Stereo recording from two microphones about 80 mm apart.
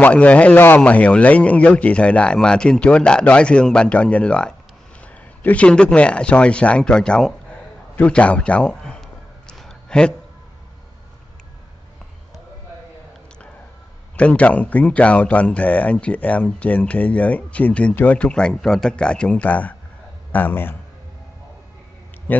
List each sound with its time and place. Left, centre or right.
0.0 s speech: centre
7.9 s a sound: centre
14.1 s a man's voice: centre
22.3 s speech: left